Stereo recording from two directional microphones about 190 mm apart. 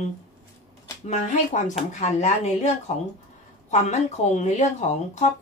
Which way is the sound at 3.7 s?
35° left (ahead or behind).